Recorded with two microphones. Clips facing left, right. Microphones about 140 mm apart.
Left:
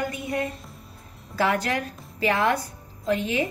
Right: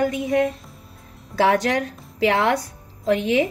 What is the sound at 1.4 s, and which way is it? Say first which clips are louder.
A woman's voice: right 5 dB; 85° right.